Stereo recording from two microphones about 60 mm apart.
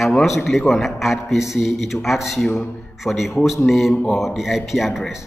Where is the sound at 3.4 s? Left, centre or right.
Centre.